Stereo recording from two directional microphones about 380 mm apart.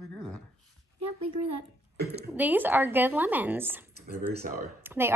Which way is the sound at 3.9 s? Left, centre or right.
Right.